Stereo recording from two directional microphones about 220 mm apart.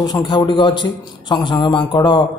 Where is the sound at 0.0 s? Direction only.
20° left (ahead or behind).